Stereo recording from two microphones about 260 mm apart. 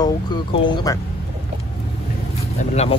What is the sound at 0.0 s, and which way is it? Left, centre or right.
Speech, centre.